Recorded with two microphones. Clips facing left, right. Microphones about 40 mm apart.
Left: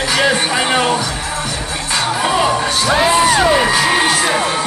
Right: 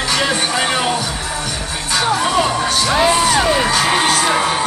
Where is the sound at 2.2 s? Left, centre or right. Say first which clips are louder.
Left 1 dB; centre.